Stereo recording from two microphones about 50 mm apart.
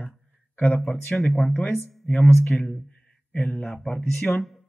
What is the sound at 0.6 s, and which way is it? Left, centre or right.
Speech, left.